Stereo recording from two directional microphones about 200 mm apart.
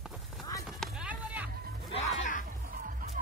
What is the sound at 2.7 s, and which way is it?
Music, 45° right (ahead or behind).